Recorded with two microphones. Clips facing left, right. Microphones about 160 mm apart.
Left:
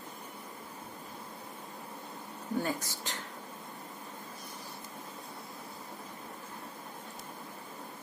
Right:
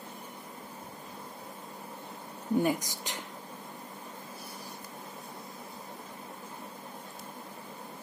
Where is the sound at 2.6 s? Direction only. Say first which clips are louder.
Right 5 dB; 15° right (ahead or behind).